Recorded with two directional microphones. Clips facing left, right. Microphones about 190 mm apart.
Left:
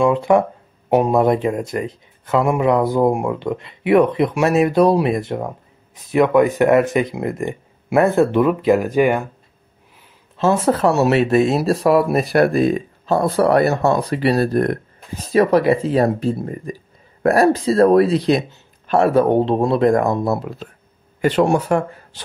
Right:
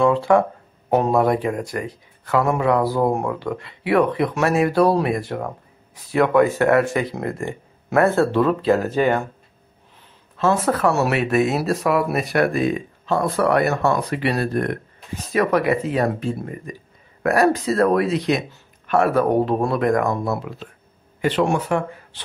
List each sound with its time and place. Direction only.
0.0 s a man's voice: 15° left (ahead or behind)
10.3 s a man's voice: 25° left (ahead or behind)